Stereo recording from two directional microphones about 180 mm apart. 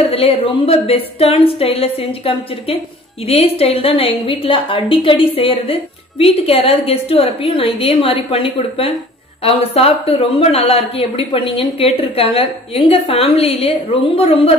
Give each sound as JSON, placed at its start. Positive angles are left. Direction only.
{"t": 0.0, "sound": "a woman's voice", "side_deg": 35}